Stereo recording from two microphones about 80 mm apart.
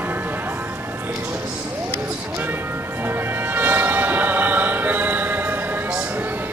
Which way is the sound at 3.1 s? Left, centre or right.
Right.